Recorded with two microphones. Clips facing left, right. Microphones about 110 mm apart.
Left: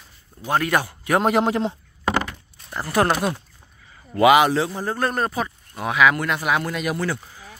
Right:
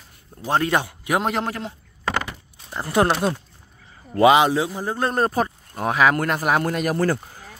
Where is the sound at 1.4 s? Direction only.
20° left (ahead or behind).